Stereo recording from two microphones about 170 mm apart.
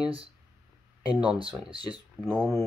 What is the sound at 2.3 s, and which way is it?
Speech, centre (ahead or behind).